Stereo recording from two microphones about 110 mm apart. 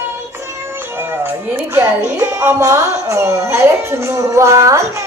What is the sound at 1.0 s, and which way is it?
Music, 20° right (ahead or behind).